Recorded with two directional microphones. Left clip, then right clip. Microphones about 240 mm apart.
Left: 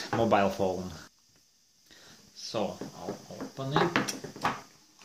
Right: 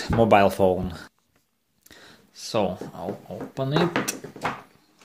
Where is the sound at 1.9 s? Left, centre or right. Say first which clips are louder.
Right 5 dB; right.